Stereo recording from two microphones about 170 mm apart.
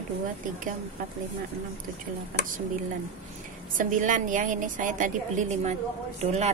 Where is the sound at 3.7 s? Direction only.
50° right (ahead or behind).